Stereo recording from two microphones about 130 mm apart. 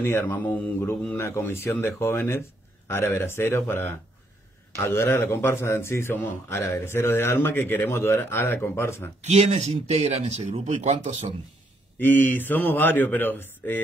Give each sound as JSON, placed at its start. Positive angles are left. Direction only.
{"t": 0.0, "sound": "a man's voice", "side_deg": 15}
{"t": 9.2, "sound": "speech", "side_deg": -60}
{"t": 12.0, "sound": "speech", "side_deg": 15}